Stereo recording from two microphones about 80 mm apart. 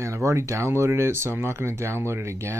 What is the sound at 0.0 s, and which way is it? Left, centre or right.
Speech, right.